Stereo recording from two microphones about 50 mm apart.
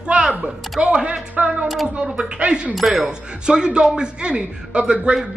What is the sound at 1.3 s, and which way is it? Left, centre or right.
Typing, right.